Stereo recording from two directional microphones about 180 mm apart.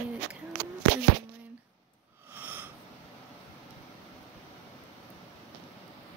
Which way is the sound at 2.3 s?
10° right (ahead or behind).